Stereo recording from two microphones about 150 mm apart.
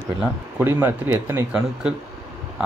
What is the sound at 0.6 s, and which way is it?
Speech, 15° right (ahead or behind).